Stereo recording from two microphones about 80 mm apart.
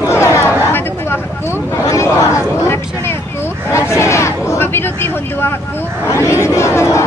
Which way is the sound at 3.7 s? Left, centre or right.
Left.